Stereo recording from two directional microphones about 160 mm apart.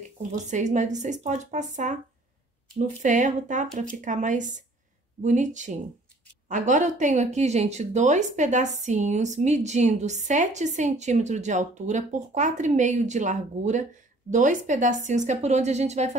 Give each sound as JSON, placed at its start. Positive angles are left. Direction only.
{"t": 0.3, "sound": "speech", "side_deg": -50}
{"t": 3.0, "sound": "speech", "side_deg": -50}